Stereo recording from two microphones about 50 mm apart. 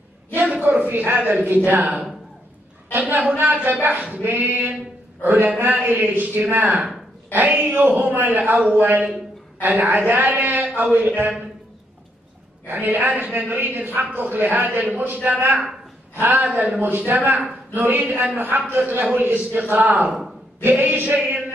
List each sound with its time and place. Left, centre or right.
0.3 s a sound: right
0.7 s a man's voice: right
3.1 s a man's voice: right
12.6 s a man's voice: right
16.3 s a man's voice: right